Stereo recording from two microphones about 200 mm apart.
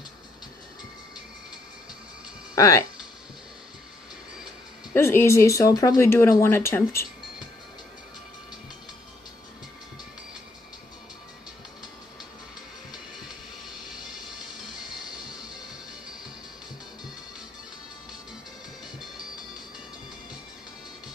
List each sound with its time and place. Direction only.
2.5 s speech: 15° left (ahead or behind)
4.9 s speech: 10° left (ahead or behind)